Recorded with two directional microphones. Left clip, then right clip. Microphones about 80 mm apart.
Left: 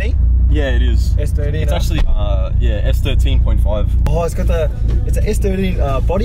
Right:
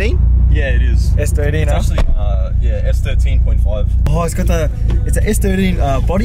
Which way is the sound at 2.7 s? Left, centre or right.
Left.